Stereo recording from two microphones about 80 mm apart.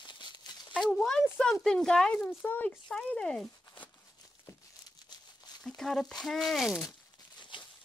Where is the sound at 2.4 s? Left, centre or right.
Left.